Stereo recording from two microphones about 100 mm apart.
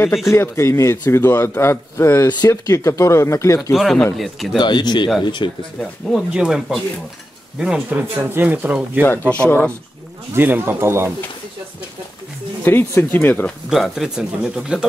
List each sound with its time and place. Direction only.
0.3 s a man's voice: 25° left (ahead or behind)
3.7 s speech: centre (ahead or behind)
4.6 s speech: 50° left (ahead or behind)
5.8 s speech: 5° left (ahead or behind)
6.3 s speech: 5° right (ahead or behind)
10.3 s speech: 20° right (ahead or behind)
12.6 s a man's voice: 20° left (ahead or behind)
13.7 s speech: 5° right (ahead or behind)